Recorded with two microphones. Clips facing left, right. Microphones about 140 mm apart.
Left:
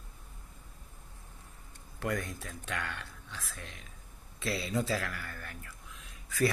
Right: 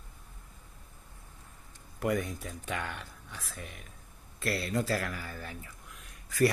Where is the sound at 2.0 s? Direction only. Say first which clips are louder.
Right 4 dB; 15° right (ahead or behind).